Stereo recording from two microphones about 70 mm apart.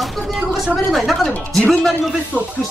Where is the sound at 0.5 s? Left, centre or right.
Centre.